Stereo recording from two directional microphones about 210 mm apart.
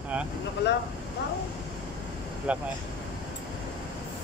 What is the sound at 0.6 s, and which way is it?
Speech, 55° left (ahead or behind).